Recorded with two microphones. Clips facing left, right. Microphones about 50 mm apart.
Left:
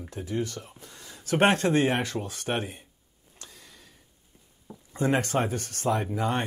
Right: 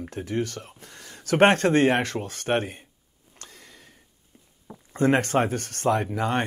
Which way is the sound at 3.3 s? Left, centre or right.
Right.